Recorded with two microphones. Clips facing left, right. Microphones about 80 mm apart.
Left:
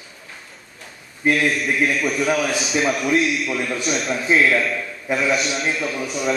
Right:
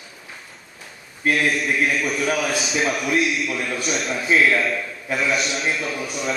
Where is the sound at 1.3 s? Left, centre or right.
Centre.